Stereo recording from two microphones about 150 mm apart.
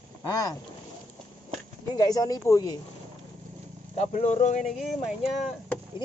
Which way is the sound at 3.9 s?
45° left (ahead or behind).